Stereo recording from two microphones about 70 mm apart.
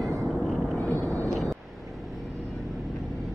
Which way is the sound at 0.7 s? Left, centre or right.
Left.